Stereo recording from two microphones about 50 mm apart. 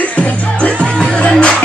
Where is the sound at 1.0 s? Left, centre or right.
Centre.